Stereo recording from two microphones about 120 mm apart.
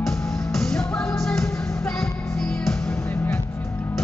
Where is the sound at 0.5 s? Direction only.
5° left (ahead or behind).